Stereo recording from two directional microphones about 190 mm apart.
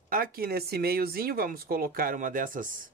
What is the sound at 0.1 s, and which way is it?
Speech, 50° right (ahead or behind).